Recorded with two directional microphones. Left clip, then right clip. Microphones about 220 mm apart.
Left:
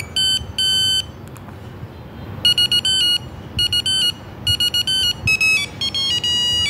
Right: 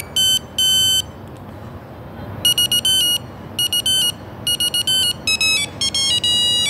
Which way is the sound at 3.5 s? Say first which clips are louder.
Left 1 dB; 30° right (ahead or behind).